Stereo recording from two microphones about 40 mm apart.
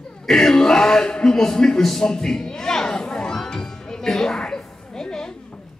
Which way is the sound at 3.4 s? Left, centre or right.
Centre.